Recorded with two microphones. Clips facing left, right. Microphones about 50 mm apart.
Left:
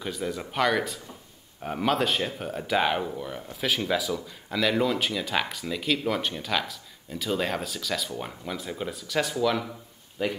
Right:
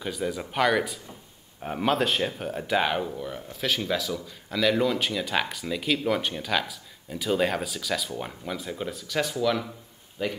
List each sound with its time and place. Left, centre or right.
0.0 s speech: centre